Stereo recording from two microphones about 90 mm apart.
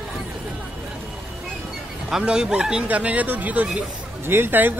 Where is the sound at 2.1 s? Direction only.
10° right (ahead or behind).